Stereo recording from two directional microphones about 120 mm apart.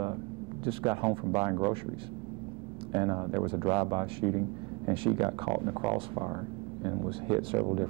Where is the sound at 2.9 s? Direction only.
40° right (ahead or behind).